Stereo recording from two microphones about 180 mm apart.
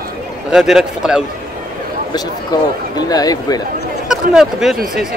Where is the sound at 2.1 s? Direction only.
20° left (ahead or behind).